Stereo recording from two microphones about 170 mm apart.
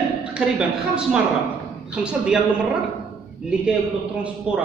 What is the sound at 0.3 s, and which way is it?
Speech, 5° right (ahead or behind).